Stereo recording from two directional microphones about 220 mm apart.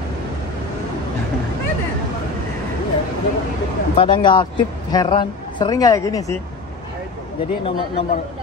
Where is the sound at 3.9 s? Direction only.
20° left (ahead or behind).